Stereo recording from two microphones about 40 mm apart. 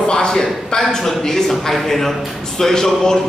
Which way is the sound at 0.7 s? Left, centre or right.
Centre.